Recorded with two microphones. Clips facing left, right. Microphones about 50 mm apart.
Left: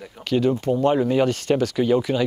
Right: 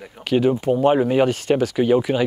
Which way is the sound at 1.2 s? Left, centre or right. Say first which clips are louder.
Right 2 dB; centre.